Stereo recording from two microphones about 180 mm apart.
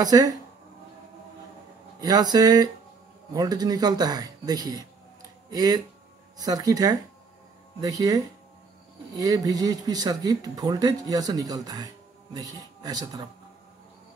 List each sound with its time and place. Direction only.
0.0 s speech: 20° right (ahead or behind)
2.0 s speech: 20° right (ahead or behind)